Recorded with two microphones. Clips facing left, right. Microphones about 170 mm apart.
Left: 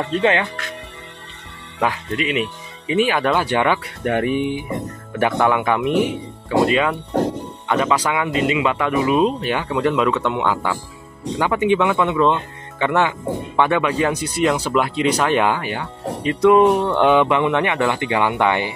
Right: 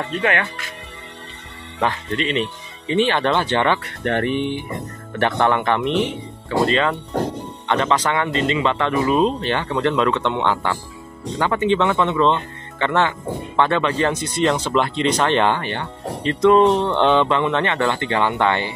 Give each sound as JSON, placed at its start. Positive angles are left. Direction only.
{"t": 0.2, "sound": "speech", "side_deg": 20}
{"t": 1.8, "sound": "speech", "side_deg": 10}